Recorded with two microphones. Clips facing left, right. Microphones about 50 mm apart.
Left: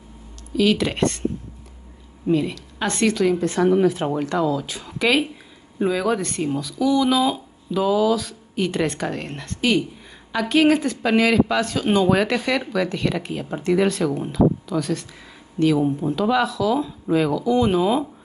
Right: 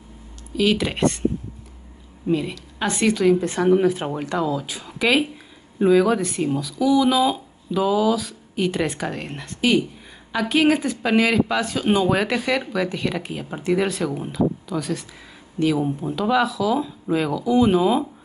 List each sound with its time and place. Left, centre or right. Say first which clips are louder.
0.6 s speech: left 1 dB; centre
2.2 s speech: left 2 dB; centre